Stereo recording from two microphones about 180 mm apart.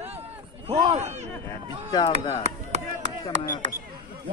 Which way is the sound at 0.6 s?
40° right (ahead or behind).